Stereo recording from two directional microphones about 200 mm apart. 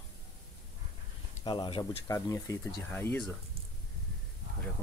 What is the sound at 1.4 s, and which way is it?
Speech, 25° left (ahead or behind).